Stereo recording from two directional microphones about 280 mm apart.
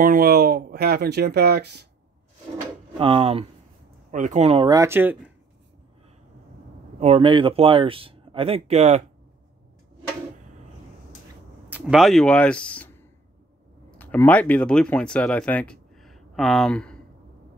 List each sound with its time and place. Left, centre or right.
0.0 s speech: right
3.0 s speech: centre
7.0 s speech: centre
11.7 s speech: centre